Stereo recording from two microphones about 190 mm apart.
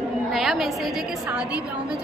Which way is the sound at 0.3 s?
Centre (ahead or behind).